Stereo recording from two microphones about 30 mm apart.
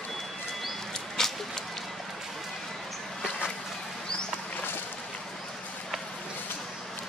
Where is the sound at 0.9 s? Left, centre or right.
Centre.